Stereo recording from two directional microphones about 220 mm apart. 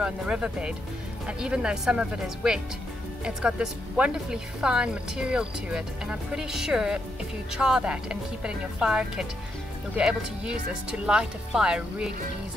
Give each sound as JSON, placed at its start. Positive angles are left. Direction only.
{"t": 0.0, "sound": "a woman's voice", "side_deg": -5}